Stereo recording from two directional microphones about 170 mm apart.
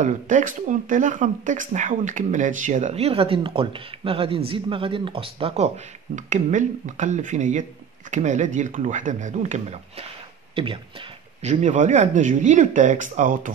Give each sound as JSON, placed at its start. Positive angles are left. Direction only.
{"t": 0.0, "sound": "speech", "side_deg": -50}
{"t": 6.1, "sound": "speech", "side_deg": -45}
{"t": 11.4, "sound": "speech", "side_deg": -45}